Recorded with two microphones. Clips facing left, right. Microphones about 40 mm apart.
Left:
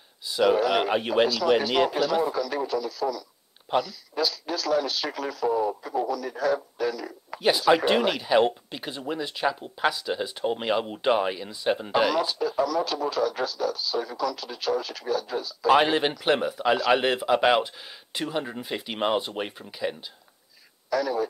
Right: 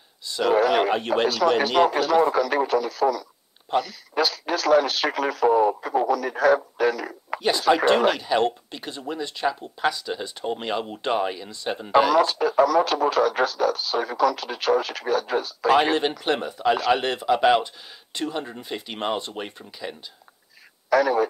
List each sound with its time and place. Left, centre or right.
0.5 s speech: right
0.8 s speech: centre
1.2 s speech: right
7.7 s speech: centre
12.2 s speech: right
15.7 s speech: centre
20.9 s speech: right